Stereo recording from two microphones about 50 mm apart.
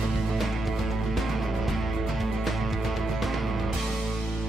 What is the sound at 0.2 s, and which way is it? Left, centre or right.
Music, centre.